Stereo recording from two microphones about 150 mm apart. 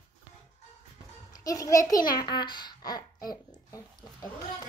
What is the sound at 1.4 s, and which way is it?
A child's voice, 20° left (ahead or behind).